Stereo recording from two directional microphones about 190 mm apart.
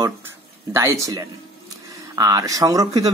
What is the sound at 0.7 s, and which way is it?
Speech, 15° right (ahead or behind).